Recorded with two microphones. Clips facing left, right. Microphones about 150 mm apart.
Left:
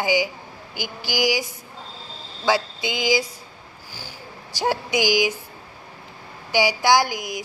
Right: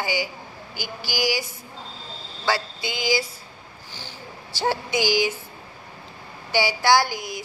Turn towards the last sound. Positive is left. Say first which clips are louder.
# left 1 dB
turn(degrees=15)  # may be behind; listen again after turning